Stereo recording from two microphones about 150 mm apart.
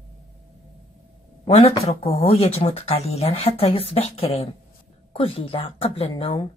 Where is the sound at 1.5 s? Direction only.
40° left (ahead or behind).